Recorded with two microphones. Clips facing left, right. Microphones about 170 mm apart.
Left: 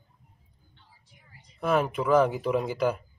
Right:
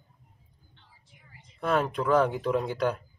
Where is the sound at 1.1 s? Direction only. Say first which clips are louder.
Right 2 dB; 40° left (ahead or behind).